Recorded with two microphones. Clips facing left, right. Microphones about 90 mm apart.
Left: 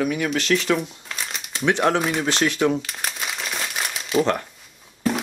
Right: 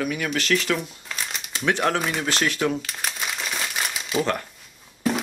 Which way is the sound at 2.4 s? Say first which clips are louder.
Left 4 dB; 5° left (ahead or behind).